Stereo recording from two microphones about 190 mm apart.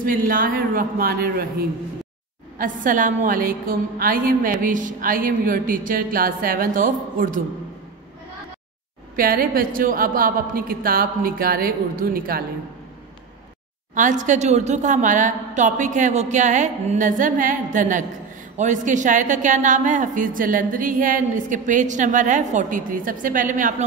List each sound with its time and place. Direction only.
0.0 s a woman's voice: 50° right (ahead or behind)
2.6 s a woman's voice: 45° right (ahead or behind)
9.1 s a woman's voice: 50° right (ahead or behind)
13.9 s a woman's voice: 40° right (ahead or behind)